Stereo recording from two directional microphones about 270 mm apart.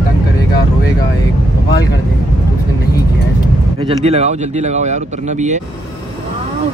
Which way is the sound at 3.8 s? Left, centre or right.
Right.